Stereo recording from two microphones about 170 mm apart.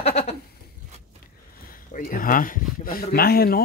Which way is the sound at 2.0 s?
55° left (ahead or behind).